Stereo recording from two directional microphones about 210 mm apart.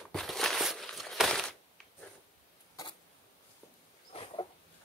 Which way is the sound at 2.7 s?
20° left (ahead or behind).